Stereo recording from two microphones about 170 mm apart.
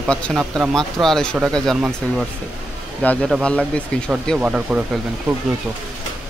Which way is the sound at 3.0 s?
5° left (ahead or behind).